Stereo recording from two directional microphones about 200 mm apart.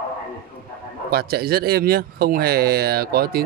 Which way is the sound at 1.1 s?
50° right (ahead or behind).